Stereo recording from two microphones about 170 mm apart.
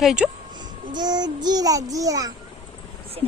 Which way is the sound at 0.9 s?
25° right (ahead or behind).